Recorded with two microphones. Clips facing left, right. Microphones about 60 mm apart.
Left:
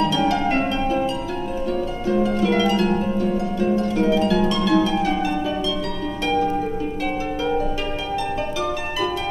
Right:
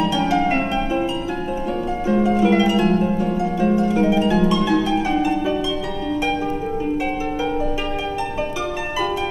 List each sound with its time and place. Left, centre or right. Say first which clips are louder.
0.3 s harp: right 2 dB; centre
2.0 s harp: right 3 dB; centre